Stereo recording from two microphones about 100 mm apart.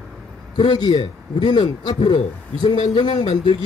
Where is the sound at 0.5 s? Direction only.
45° left (ahead or behind).